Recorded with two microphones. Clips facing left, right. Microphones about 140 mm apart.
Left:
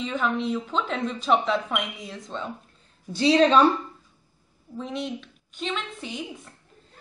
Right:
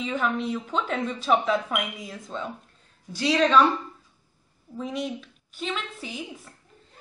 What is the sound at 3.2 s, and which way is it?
Speech, 30° left (ahead or behind).